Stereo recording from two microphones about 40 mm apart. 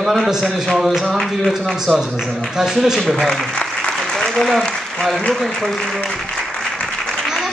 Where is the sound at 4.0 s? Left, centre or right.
Centre.